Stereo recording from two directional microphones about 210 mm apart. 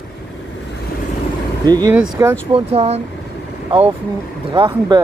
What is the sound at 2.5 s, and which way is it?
Speech, 25° right (ahead or behind).